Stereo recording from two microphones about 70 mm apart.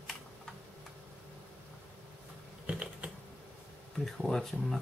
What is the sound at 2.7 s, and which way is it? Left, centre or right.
Typing, centre.